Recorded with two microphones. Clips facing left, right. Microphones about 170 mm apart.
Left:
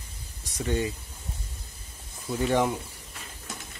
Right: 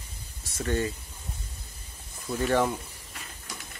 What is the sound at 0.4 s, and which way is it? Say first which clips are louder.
Speech: even; 15° left (ahead or behind).